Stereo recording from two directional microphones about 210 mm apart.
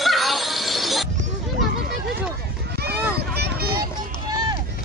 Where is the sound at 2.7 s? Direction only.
50° right (ahead or behind).